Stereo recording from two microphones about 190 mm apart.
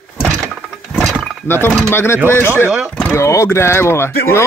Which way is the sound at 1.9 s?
10° left (ahead or behind).